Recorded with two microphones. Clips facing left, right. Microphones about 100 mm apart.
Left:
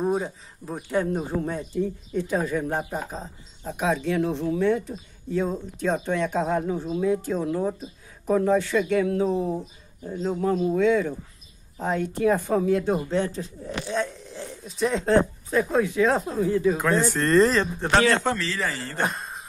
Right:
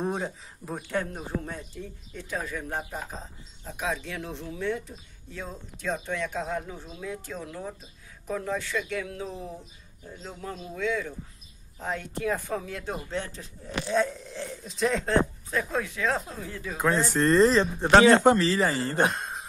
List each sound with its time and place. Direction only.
0.0 s speech: centre (ahead or behind)
1.1 s speech: 30° left (ahead or behind)
13.9 s speech: centre (ahead or behind)
15.0 s speech: 20° left (ahead or behind)
17.1 s speech: 15° right (ahead or behind)
19.0 s a sound: centre (ahead or behind)